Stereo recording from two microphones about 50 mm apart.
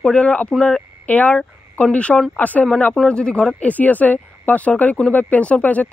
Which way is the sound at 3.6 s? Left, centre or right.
Left.